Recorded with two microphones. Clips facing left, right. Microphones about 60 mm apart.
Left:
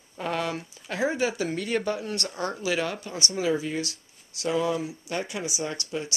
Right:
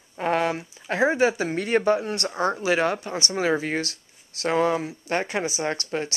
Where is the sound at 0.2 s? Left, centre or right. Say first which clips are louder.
Right 6 dB; right.